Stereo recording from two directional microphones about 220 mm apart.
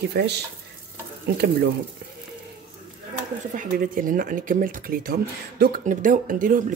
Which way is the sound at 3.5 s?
40° right (ahead or behind).